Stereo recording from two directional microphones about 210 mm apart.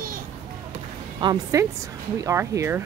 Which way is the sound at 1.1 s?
20° right (ahead or behind).